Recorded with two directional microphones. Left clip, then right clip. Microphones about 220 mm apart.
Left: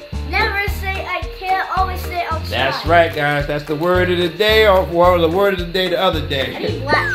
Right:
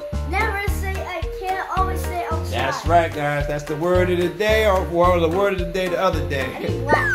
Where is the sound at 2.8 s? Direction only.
30° left (ahead or behind).